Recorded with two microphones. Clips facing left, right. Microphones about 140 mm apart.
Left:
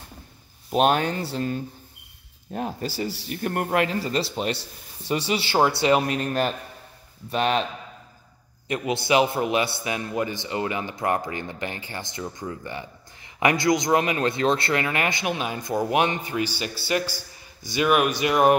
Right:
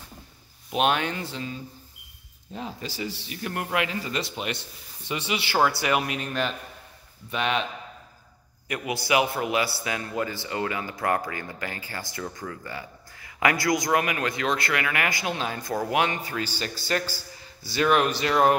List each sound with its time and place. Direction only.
0.7 s a man's voice: 40° left (ahead or behind)
2.5 s a man's voice: 50° left (ahead or behind)
8.6 s a man's voice: 25° left (ahead or behind)